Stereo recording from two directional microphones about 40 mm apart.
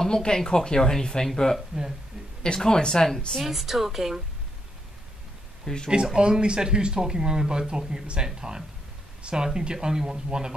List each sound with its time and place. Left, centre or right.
0.0 s speech: centre
3.3 s a woman's voice: centre
5.7 s speech: centre
6.1 s a woman's voice: right